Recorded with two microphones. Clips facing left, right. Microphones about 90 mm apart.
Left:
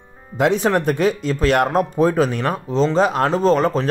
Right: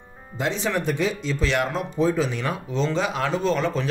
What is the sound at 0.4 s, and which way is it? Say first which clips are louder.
A man's voice: left 8 dB; 55° left (ahead or behind).